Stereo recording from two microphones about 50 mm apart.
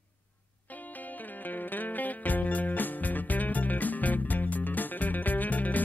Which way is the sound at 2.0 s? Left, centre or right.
Left.